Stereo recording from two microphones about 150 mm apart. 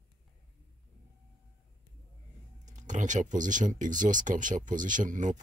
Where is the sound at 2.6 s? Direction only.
55° right (ahead or behind).